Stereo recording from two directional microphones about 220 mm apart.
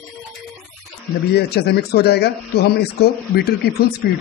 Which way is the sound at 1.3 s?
45° left (ahead or behind).